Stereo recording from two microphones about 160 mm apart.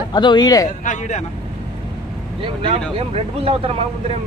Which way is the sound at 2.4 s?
35° right (ahead or behind).